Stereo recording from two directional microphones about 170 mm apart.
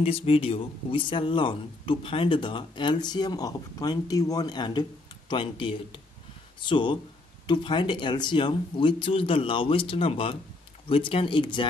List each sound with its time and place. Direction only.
0.0 s speech: 35° left (ahead or behind)